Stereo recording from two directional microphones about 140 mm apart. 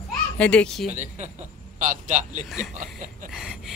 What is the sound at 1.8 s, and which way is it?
Speech, 65° right (ahead or behind).